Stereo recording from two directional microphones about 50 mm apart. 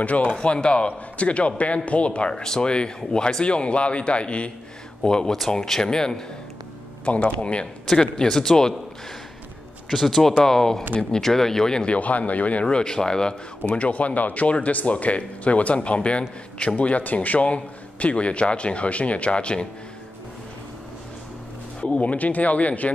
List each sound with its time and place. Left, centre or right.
0.0 s speech: left; by 6.2 s centre
7.1 s speech: left
7.8 s speech: centre
10.0 s speech: centre
13.7 s speech: left
21.8 s speech: left